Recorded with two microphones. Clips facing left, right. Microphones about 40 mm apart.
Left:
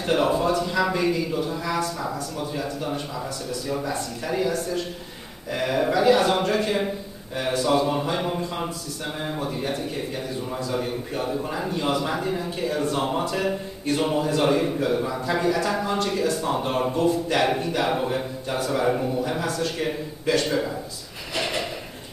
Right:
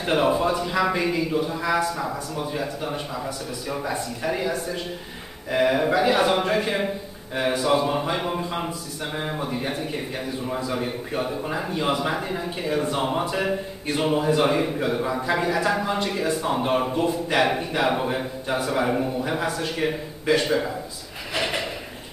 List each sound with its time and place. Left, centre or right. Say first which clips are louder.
0.0 s a man's voice: right 1 dB; centre
21.3 s drawer open or close: right 1 dB; centre